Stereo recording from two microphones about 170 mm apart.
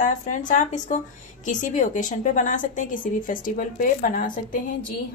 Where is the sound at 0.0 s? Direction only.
50° left (ahead or behind).